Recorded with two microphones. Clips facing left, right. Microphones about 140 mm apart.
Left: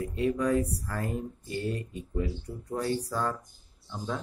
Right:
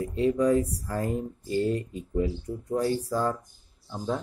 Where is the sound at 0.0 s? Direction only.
25° right (ahead or behind).